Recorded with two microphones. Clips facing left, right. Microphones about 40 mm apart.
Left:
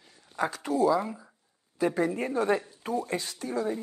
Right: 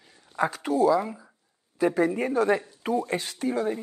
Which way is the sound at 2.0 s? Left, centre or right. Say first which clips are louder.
Right 4 dB; right.